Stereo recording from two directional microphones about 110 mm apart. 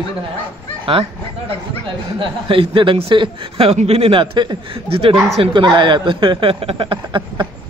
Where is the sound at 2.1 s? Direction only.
50° right (ahead or behind).